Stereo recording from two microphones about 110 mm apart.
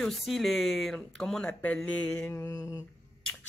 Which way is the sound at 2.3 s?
25° left (ahead or behind).